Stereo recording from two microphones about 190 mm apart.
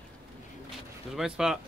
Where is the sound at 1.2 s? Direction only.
5° right (ahead or behind).